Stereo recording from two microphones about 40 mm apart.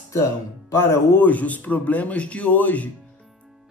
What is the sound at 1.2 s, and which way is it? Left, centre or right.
Speech, left.